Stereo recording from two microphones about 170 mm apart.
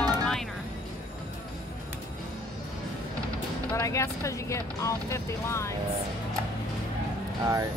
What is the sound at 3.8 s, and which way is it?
Speech, 15° left (ahead or behind).